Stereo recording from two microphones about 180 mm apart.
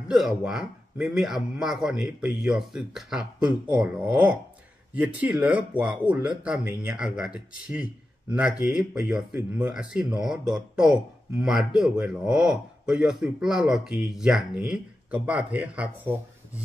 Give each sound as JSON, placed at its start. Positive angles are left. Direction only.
{"t": 0.1, "sound": "speech", "side_deg": 0}